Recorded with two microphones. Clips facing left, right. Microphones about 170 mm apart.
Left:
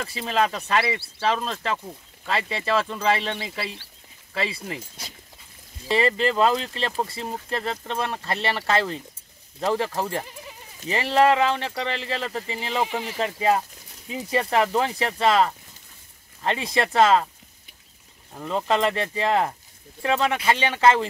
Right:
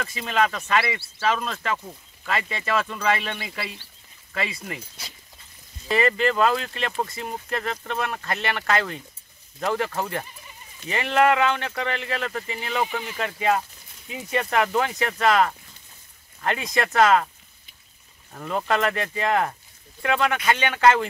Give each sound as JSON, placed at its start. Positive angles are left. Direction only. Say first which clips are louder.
{"t": 0.0, "sound": "speech", "louder": "even", "side_deg": 30}
{"t": 4.7, "sound": "speech", "louder": "left 2 dB", "side_deg": 50}
{"t": 5.9, "sound": "speech", "louder": "even", "side_deg": 30}
{"t": 18.3, "sound": "speech", "louder": "left 1 dB", "side_deg": 15}
{"t": 18.7, "sound": "speech", "louder": "left 2 dB", "side_deg": 25}